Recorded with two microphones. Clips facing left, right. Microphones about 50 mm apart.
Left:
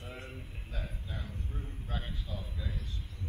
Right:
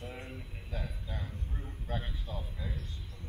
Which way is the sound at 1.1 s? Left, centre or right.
Right.